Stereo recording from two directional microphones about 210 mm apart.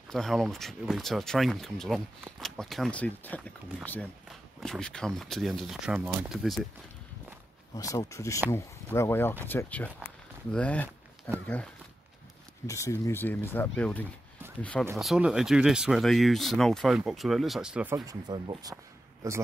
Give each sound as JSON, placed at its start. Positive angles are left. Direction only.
{"t": 0.1, "sound": "speech", "side_deg": 0}
{"t": 7.7, "sound": "speech", "side_deg": 15}
{"t": 10.0, "sound": "a sound", "side_deg": 5}
{"t": 11.4, "sound": "speech", "side_deg": 5}
{"t": 17.9, "sound": "speech", "side_deg": -20}